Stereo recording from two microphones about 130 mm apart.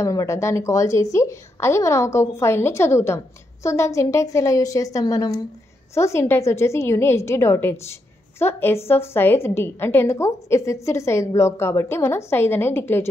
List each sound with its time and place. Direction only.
0.0 s a woman's voice: 25° left (ahead or behind)